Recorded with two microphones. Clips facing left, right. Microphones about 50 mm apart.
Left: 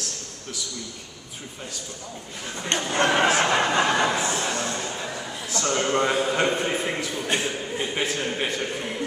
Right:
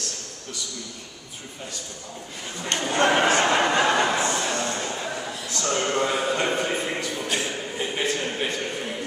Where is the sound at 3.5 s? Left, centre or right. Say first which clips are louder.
Right 1 dB; centre.